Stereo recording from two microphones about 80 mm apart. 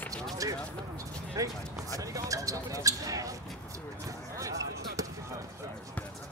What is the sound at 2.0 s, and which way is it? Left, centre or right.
Basketball bounce, right.